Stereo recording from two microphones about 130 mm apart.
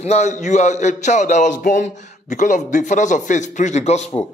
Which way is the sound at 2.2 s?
70° left (ahead or behind).